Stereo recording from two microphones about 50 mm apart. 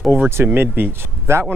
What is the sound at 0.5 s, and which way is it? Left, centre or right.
Speech, right.